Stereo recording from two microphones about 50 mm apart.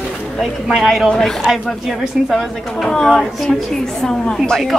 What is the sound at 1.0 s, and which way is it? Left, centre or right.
Speech, centre.